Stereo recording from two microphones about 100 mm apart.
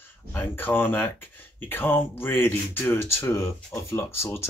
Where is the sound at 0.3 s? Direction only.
20° left (ahead or behind).